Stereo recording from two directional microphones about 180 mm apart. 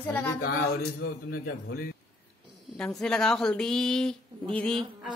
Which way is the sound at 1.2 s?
60° left (ahead or behind).